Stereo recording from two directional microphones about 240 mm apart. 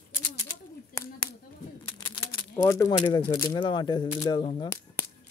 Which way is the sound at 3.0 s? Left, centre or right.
Centre.